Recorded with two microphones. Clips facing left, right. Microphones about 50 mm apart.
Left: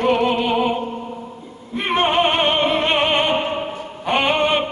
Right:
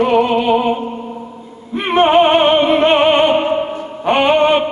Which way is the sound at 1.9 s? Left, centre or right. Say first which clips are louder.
Right 7 dB; centre.